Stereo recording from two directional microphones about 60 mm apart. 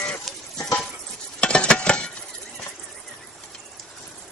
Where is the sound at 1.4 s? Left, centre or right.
Centre.